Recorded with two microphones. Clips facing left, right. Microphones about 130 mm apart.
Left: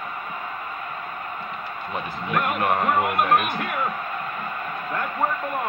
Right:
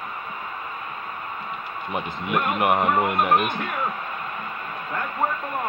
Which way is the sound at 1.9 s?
20° right (ahead or behind).